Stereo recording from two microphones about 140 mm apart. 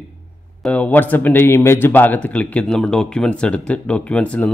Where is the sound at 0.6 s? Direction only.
10° left (ahead or behind).